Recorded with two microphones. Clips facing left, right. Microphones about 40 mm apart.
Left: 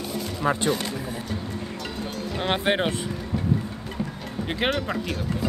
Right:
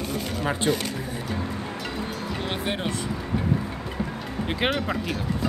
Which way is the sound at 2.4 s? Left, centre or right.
Left.